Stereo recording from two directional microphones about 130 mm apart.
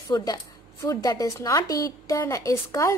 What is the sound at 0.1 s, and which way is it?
A woman's voice, 30° left (ahead or behind).